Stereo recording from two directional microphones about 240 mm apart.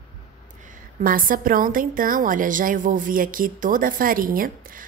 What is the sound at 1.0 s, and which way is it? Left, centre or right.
A woman's voice, right.